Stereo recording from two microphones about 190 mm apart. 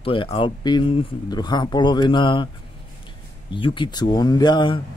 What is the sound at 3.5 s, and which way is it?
Speech, 25° left (ahead or behind).